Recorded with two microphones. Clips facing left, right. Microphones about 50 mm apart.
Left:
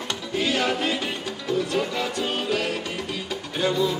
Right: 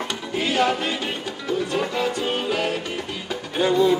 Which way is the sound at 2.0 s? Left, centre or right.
Centre.